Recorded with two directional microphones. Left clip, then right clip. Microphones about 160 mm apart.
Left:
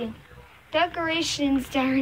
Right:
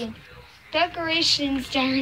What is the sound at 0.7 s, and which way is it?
A woman's voice, 5° left (ahead or behind).